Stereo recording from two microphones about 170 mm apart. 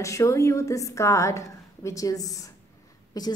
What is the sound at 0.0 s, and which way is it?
A woman's voice, 15° left (ahead or behind).